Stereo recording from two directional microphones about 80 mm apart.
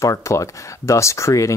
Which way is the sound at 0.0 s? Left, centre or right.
Left.